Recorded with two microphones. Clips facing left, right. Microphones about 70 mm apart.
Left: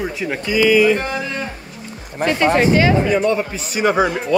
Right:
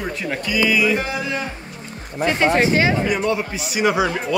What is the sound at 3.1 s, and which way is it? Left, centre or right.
Speech, left.